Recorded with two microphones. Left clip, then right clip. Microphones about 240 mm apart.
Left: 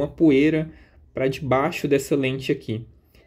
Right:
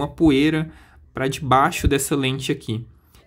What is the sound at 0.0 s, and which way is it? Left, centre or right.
Speech, centre.